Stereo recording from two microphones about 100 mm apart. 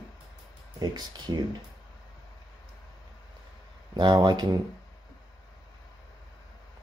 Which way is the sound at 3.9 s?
50° right (ahead or behind).